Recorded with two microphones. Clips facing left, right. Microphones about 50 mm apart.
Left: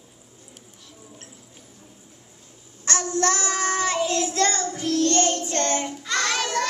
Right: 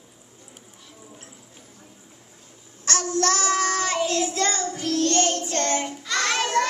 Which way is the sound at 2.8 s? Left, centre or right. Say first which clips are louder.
Even; left.